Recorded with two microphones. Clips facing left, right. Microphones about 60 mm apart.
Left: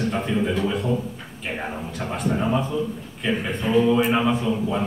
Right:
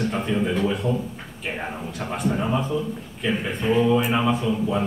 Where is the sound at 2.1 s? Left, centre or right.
Centre.